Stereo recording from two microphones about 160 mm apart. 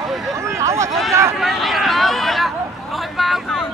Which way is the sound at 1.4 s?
Centre (ahead or behind).